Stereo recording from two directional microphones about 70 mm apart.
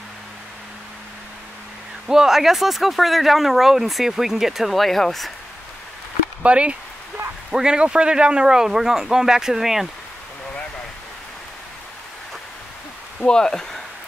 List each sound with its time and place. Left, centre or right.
2.0 s speech: centre
6.4 s a man's voice: centre
13.2 s speech: centre